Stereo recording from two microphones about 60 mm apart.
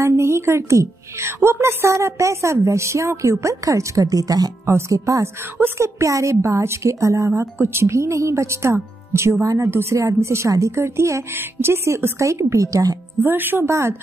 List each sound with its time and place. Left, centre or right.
0.0 s a woman's voice: right
4.6 s a woman's voice: right
5.2 s a woman's voice: right
7.5 s a woman's voice: right
9.7 s speech: right
9.9 s a woman's voice: right
13.2 s speech: right
13.7 s a woman's voice: right